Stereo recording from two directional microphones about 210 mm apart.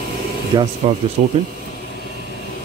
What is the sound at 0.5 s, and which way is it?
Speech, 25° right (ahead or behind).